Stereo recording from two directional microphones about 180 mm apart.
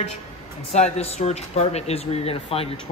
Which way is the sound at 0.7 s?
35° left (ahead or behind).